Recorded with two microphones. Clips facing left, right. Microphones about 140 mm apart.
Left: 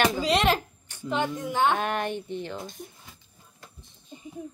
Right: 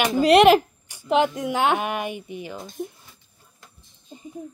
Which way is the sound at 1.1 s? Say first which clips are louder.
Right 7 dB; 85° right.